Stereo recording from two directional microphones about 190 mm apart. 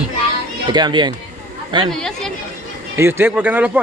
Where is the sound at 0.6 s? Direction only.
20° right (ahead or behind).